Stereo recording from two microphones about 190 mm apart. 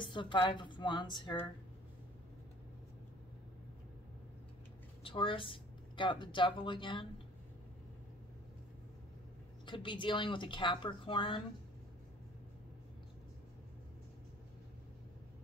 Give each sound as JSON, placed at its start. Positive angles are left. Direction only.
{"t": 0.0, "sound": "a woman's voice", "side_deg": 25}
{"t": 5.0, "sound": "speech", "side_deg": 25}
{"t": 9.7, "sound": "a woman's voice", "side_deg": 25}